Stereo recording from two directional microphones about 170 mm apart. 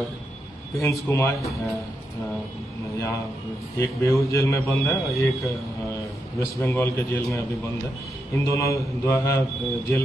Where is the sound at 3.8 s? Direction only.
15° left (ahead or behind).